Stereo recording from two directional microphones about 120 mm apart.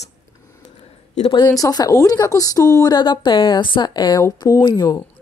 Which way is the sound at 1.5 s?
30° left (ahead or behind).